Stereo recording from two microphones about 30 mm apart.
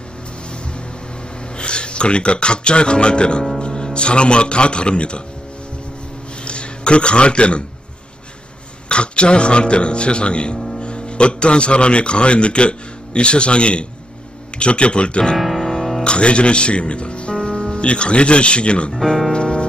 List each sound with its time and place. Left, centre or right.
1.6 s a man's voice: left
6.4 s a man's voice: left
8.8 s a man's voice: left
15.3 s music: centre
16.0 s speech: left
17.4 s speech: left
18.9 s speech: centre
19.3 s music: left